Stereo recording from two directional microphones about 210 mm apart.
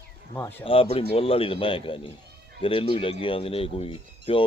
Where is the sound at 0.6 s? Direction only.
25° left (ahead or behind).